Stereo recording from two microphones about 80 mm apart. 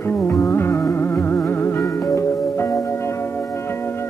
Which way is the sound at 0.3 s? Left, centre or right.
Left.